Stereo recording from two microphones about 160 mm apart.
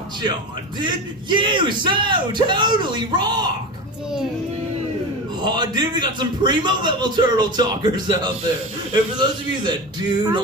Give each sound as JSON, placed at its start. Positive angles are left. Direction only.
{"t": 0.7, "sound": "a man's voice", "side_deg": -30}
{"t": 5.4, "sound": "a man's voice", "side_deg": -25}